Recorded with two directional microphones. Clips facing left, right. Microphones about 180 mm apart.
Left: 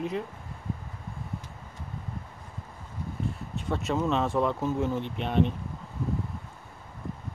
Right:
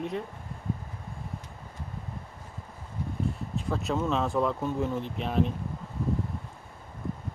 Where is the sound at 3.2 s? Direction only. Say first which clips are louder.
Right 2 dB; centre (ahead or behind).